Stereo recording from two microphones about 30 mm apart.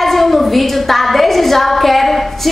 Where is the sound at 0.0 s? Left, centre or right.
Centre.